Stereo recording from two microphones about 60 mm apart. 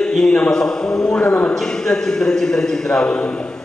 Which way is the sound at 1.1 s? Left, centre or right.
Left.